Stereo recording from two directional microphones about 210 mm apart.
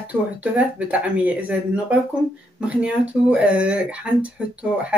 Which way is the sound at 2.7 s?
5° right (ahead or behind).